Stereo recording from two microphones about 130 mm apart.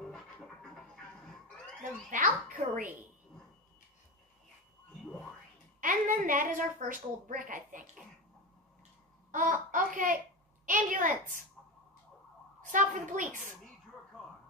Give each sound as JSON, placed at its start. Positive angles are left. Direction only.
{"t": 0.0, "sound": "music", "side_deg": 5}
{"t": 1.8, "sound": "a sound", "side_deg": -85}
{"t": 5.8, "sound": "a woman's voice", "side_deg": -90}
{"t": 9.3, "sound": "a child's voice", "side_deg": -90}
{"t": 12.6, "sound": "a child's voice", "side_deg": -80}